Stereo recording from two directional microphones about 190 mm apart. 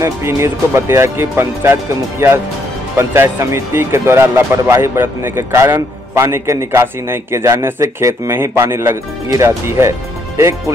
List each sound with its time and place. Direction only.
0.0 s speech: 15° right (ahead or behind)